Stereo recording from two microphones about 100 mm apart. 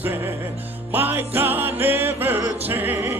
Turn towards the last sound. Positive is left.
turn(degrees=-20)  # may be behind; listen again after turning